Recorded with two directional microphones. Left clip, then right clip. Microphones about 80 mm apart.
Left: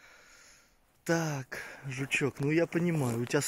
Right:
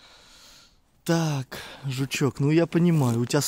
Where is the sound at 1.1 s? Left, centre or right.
Right.